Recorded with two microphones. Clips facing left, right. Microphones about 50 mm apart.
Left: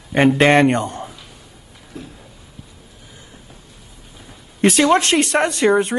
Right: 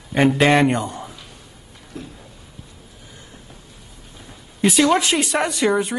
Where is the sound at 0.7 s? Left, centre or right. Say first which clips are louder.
Left 3 dB; left.